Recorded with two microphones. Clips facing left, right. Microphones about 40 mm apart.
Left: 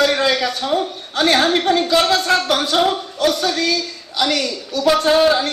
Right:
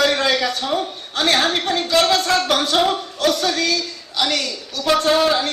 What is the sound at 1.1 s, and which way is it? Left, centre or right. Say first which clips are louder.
Speech: left 3 dB; centre.